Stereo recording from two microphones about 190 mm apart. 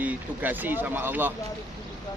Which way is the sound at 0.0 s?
10° right (ahead or behind).